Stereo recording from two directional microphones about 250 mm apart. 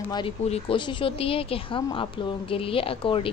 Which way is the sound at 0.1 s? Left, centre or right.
Left.